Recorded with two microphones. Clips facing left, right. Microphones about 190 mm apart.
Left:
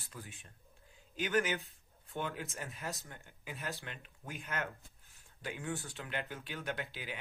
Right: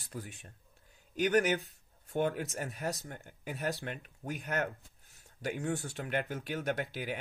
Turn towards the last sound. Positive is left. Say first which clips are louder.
# right 6 dB
turn(degrees=-40)  # may be behind; listen again after turning